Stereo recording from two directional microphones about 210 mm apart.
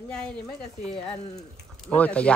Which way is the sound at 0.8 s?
25° left (ahead or behind).